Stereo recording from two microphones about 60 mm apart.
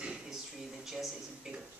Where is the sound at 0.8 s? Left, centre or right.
Centre.